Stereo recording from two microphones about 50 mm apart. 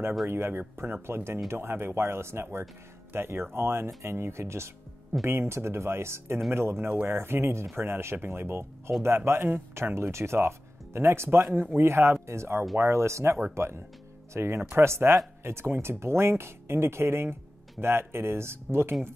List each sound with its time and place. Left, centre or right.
0.3 s speech: right
5.2 s speech: right